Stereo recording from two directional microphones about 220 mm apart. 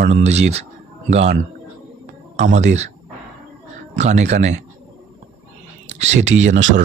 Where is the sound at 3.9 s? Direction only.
30° right (ahead or behind).